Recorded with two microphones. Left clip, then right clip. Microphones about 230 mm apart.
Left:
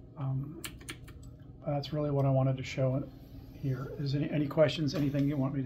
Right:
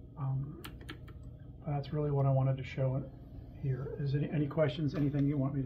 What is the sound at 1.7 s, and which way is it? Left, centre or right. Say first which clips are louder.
A man's voice: left 3 dB; left.